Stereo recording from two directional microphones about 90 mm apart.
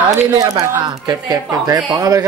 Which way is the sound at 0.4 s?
40° right (ahead or behind).